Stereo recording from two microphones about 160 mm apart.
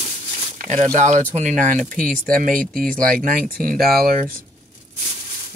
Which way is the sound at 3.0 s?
60° right (ahead or behind).